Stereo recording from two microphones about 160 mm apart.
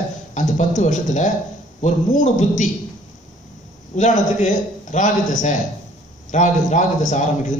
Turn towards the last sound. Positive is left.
turn(degrees=50)  # may be behind; listen again after turning